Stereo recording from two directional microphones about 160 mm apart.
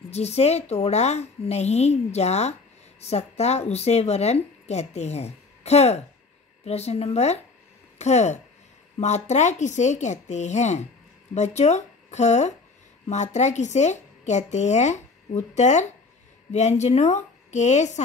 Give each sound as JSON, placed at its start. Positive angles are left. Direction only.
{"t": 0.1, "sound": "speech", "side_deg": 40}